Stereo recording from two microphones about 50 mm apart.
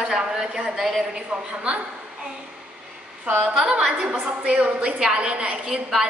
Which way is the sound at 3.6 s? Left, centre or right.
Centre.